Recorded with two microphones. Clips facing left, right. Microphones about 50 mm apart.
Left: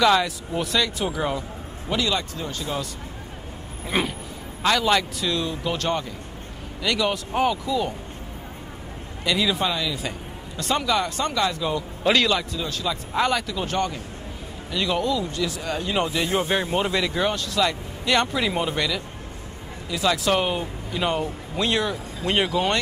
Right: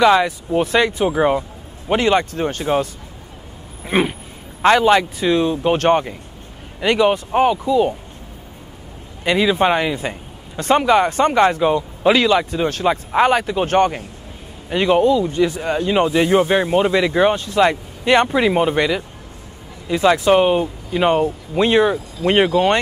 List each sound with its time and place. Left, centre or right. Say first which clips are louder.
0.0 s a man's voice: right 6 dB; right
3.8 s a man's voice: right 7 dB; right
6.8 s speech: right 8 dB; right
9.2 s a man's voice: right 7 dB; right
9.7 s a man's voice: right 8 dB; right
12.0 s a man's voice: right 5 dB; centre
12.3 s a man's voice: right 8 dB; right
16.7 s speech: right 8 dB; right